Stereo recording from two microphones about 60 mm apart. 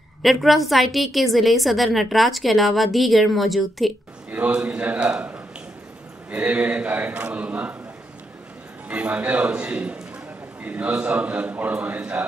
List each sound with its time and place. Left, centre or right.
0.2 s a woman's voice: centre
4.3 s a sound: right
4.6 s a man's voice: right
8.8 s a man's voice: right